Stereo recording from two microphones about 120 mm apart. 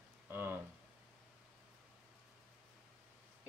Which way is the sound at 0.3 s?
20° right (ahead or behind).